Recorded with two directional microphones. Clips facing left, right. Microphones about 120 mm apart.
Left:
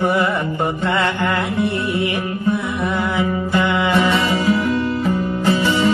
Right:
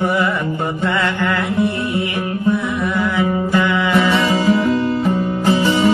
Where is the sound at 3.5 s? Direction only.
25° left (ahead or behind).